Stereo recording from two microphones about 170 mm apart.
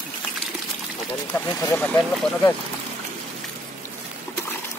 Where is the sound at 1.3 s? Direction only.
10° left (ahead or behind).